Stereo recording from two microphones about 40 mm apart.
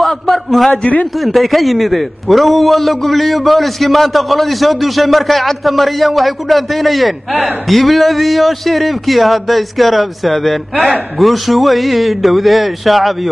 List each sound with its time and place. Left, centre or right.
0.0 s a sound: centre
0.7 s speech: left
1.2 s a man's voice: centre